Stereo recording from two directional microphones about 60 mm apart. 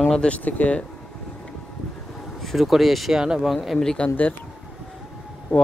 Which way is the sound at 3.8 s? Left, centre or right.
Centre.